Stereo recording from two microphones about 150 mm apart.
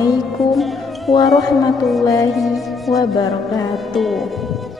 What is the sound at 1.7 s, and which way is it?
Music, centre (ahead or behind).